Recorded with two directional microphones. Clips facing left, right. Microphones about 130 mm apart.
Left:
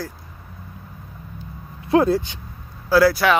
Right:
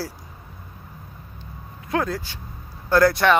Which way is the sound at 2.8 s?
5° left (ahead or behind).